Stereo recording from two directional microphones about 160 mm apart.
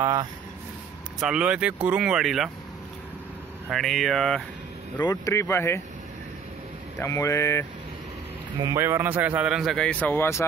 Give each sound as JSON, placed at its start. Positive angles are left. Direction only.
{"t": 0.0, "sound": "speech", "side_deg": -20}
{"t": 1.2, "sound": "a man's voice", "side_deg": -5}
{"t": 3.7, "sound": "a man's voice", "side_deg": 0}
{"t": 5.0, "sound": "speech", "side_deg": 20}
{"t": 7.0, "sound": "speech", "side_deg": 20}
{"t": 8.6, "sound": "a man's voice", "side_deg": -15}